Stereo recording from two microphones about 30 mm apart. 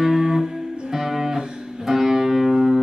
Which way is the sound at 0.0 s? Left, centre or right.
Centre.